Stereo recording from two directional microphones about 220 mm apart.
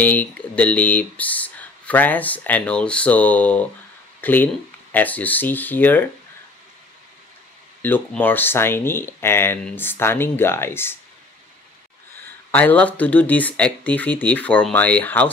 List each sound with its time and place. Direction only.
0.0 s speech: 5° left (ahead or behind)
7.8 s speech: 10° left (ahead or behind)
12.4 s speech: 10° left (ahead or behind)